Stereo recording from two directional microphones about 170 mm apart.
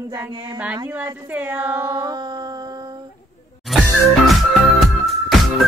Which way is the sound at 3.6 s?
Centre (ahead or behind).